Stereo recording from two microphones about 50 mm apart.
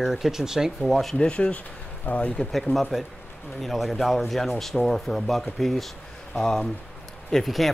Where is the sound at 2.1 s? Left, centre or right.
Left.